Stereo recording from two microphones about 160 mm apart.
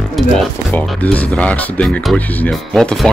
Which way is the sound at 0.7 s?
10° left (ahead or behind).